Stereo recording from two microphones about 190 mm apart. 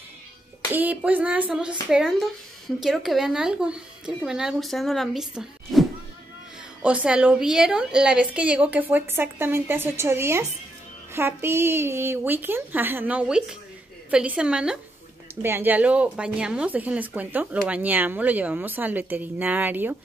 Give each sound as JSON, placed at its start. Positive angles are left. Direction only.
{"t": 0.7, "sound": "a woman's voice", "side_deg": -10}